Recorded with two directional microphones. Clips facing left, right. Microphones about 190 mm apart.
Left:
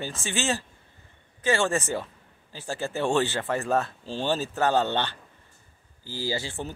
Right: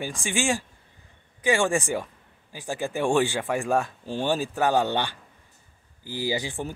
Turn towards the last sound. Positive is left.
turn(degrees=-15)  # may be behind; listen again after turning